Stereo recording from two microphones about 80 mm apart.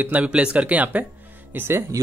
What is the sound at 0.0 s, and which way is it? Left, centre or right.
Speech, centre.